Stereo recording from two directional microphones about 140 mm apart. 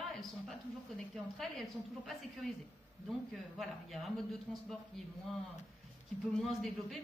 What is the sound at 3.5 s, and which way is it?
Speech, centre (ahead or behind).